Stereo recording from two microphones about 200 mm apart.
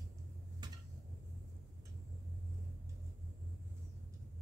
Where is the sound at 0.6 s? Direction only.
20° right (ahead or behind).